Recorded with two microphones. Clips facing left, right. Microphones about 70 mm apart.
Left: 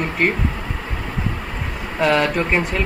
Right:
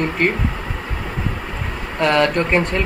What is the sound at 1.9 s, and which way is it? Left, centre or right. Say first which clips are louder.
Speech: right 1 dB; centre.